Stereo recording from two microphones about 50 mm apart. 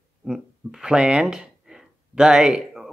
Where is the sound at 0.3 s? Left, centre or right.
Centre.